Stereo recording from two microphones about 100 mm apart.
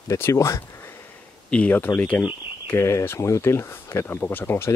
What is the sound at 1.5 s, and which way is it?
Speech, 15° left (ahead or behind).